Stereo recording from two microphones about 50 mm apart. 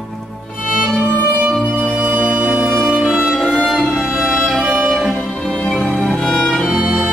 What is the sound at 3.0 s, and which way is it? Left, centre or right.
Music, centre.